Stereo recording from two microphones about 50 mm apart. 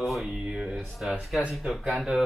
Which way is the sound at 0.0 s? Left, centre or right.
Centre.